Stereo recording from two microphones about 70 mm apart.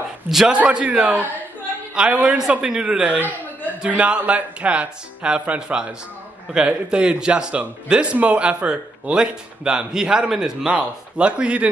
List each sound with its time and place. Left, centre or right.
0.3 s a man's voice: centre
0.6 s a man's voice: centre